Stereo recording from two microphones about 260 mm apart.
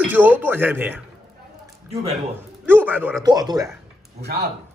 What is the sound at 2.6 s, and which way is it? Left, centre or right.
A man's voice, centre.